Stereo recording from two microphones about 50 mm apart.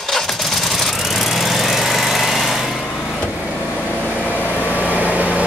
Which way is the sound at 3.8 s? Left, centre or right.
Right.